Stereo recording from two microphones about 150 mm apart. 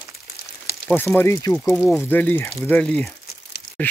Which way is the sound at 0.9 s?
15° left (ahead or behind).